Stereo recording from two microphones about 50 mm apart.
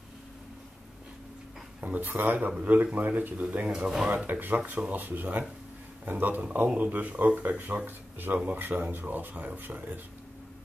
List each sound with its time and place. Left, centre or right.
2.0 s speech: right
2.6 s speech: right
3.6 s speech: centre
4.3 s speech: right
4.6 s speech: right